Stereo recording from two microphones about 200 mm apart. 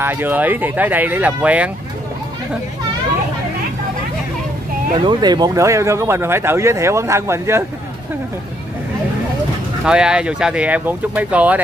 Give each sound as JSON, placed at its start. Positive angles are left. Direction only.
{"t": 0.0, "sound": "speech", "side_deg": -10}
{"t": 5.0, "sound": "speech", "side_deg": -20}
{"t": 9.8, "sound": "speech", "side_deg": -5}